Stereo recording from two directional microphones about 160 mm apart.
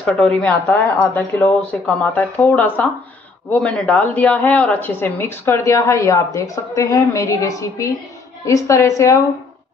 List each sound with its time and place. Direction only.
0.0 s a woman's voice: 5° left (ahead or behind)